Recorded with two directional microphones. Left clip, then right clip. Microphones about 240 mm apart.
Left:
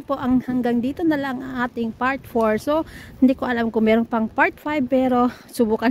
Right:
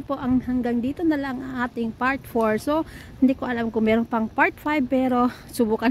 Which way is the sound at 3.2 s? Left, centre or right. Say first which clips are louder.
Left 3 dB; centre.